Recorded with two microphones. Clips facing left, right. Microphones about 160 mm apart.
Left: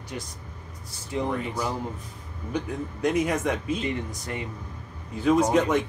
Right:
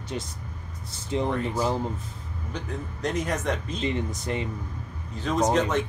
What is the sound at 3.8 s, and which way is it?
Speech, 25° right (ahead or behind).